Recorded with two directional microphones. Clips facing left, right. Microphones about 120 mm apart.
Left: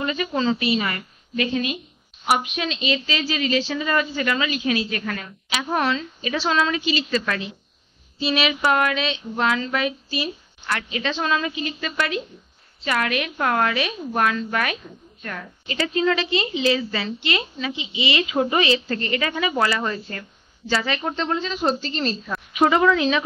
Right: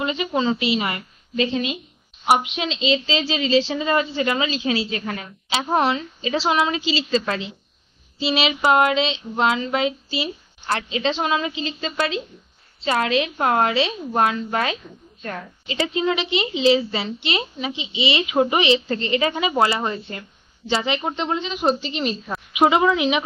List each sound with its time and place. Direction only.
0.0 s a woman's voice: 20° right (ahead or behind)